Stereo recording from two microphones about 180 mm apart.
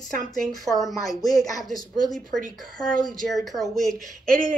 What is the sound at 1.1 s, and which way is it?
Speech, 20° left (ahead or behind).